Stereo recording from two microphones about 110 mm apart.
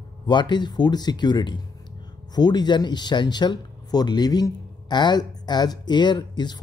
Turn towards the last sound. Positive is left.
turn(degrees=40)  # may be behind; listen again after turning